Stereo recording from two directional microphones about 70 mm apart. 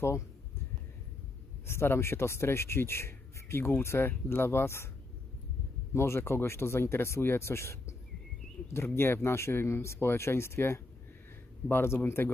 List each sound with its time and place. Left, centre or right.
1.7 s speech: left
5.9 s speech: left